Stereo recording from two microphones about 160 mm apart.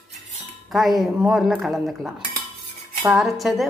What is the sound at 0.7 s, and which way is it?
A woman's voice, centre (ahead or behind).